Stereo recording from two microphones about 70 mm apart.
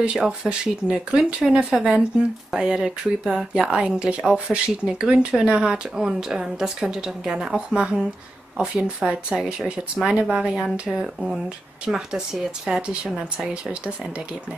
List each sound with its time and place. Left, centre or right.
0.0 s speech: centre